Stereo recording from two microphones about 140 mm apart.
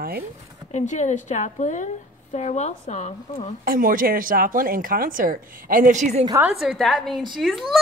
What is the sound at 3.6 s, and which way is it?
A woman's voice, 85° right.